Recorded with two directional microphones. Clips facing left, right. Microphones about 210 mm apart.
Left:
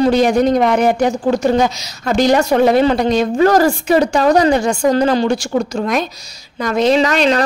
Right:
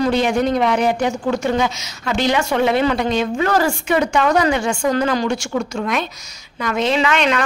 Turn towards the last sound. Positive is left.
turn(degrees=35)  # may be behind; listen again after turning